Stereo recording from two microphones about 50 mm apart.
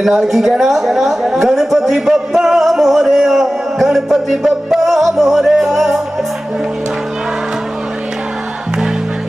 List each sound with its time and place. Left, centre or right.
0.0 s a woman's voice: centre